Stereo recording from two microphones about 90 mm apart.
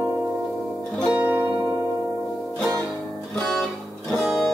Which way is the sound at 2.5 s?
10° left (ahead or behind).